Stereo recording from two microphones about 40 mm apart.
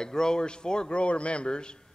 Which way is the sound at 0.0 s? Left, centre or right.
Centre.